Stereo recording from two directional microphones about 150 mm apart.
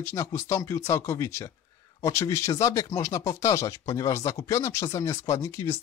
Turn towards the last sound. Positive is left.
turn(degrees=20)  # may be behind; listen again after turning